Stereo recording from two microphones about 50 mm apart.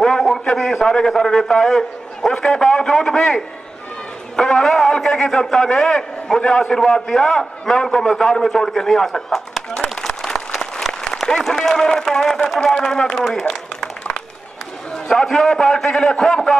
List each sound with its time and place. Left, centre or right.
0.0 s a man's voice: centre
10.0 s applause: centre
12.5 s a sound: centre
15.2 s a man's voice: centre